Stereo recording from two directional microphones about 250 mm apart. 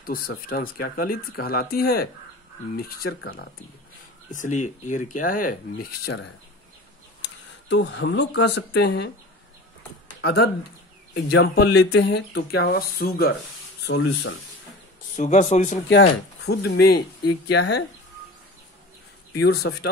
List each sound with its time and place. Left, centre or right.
0.0 s speech: left
7.7 s speech: left
10.2 s speech: left
13.9 s speech: left
15.1 s speech: left
15.9 s speech: left
19.3 s speech: left